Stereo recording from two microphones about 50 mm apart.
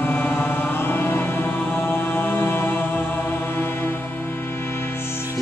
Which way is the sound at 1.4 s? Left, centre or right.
Left.